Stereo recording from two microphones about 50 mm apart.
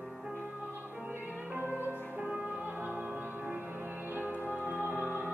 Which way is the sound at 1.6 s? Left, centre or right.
Right.